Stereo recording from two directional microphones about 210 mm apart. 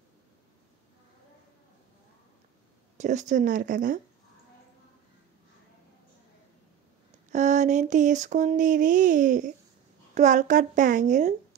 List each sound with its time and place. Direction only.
3.0 s a woman's voice: 35° right (ahead or behind)
7.2 s a sound: 35° right (ahead or behind)
10.1 s a woman's voice: 35° right (ahead or behind)